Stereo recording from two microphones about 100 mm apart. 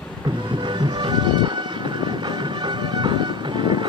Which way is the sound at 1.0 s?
50° right (ahead or behind).